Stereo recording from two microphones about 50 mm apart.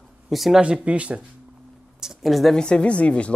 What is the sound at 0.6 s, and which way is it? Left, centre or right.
Speech, right.